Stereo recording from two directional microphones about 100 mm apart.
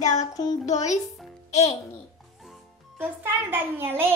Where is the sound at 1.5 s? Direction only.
90° left.